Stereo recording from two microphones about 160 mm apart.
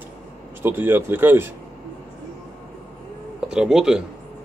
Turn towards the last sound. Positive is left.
turn(degrees=-5)  # may be behind; listen again after turning